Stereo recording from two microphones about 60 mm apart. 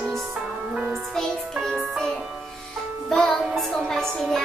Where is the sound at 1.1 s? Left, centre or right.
Centre.